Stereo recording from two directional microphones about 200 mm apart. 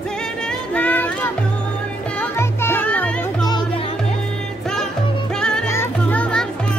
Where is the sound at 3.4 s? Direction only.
20° left (ahead or behind).